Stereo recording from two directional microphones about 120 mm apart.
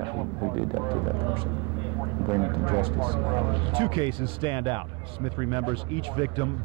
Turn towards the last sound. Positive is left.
turn(degrees=-40)  # may be behind; listen again after turning